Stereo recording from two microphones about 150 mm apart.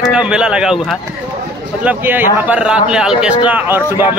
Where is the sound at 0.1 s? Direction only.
5° right (ahead or behind).